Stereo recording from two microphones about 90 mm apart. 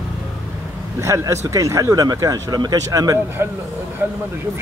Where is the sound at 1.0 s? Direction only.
35° right (ahead or behind).